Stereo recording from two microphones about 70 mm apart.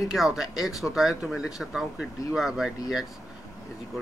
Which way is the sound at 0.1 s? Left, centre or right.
Centre.